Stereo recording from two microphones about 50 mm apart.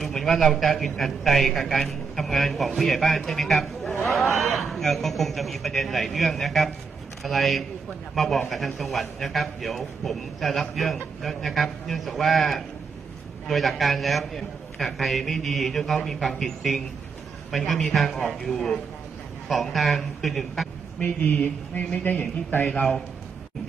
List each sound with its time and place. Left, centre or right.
0.0 s a man's voice: centre
19.5 s a man's voice: centre
21.0 s speech: left
22.5 s a man's voice: left